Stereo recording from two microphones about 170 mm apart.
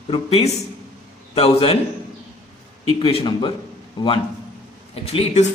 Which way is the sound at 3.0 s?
30° left (ahead or behind).